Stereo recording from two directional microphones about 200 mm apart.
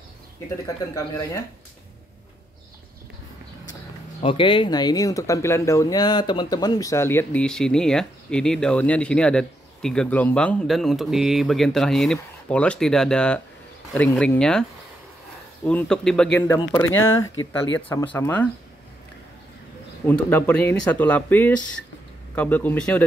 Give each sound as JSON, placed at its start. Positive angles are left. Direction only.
{"t": 4.2, "sound": "speech", "side_deg": 25}
{"t": 20.1, "sound": "speech", "side_deg": 10}